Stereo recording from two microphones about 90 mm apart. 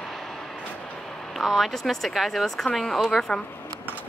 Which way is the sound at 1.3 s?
Centre (ahead or behind).